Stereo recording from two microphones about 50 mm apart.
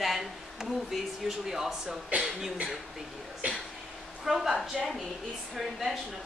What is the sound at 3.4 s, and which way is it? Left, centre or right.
Speech, right.